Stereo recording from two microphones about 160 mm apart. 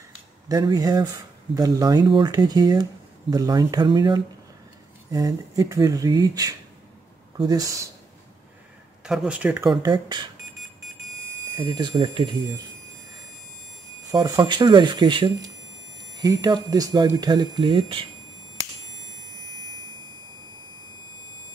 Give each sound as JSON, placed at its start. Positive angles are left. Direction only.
{"t": 0.5, "sound": "speech", "side_deg": -25}
{"t": 9.0, "sound": "speech", "side_deg": -5}
{"t": 11.5, "sound": "speech", "side_deg": -25}
{"t": 14.0, "sound": "speech", "side_deg": -25}